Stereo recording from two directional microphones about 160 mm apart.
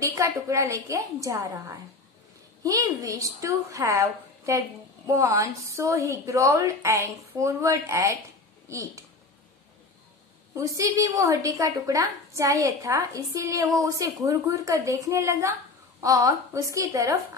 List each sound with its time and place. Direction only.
0.0 s a woman's voice: 20° right (ahead or behind)
10.5 s a woman's voice: 20° right (ahead or behind)